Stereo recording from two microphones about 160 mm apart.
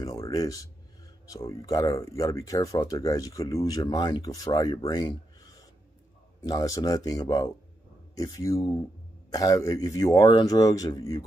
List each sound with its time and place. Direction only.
0.0 s speech: 20° left (ahead or behind)